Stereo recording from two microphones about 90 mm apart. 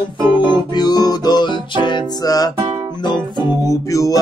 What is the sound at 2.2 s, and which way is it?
Music, 45° left (ahead or behind).